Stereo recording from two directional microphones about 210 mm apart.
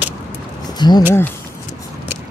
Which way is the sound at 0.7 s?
20° left (ahead or behind).